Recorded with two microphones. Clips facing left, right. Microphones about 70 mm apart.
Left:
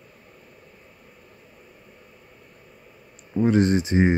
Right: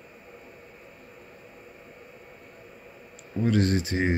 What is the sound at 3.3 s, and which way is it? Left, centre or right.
Speech, left.